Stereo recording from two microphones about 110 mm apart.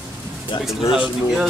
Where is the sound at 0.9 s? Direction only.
5° right (ahead or behind).